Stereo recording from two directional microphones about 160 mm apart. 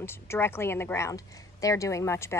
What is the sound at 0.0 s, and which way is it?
A woman's voice, 15° left (ahead or behind).